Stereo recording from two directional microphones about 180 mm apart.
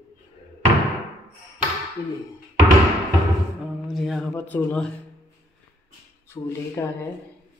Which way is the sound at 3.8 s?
Centre (ahead or behind).